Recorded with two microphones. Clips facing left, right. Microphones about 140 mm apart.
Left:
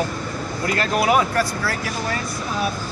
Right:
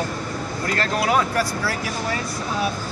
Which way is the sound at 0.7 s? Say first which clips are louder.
Left 3 dB; 10° left (ahead or behind).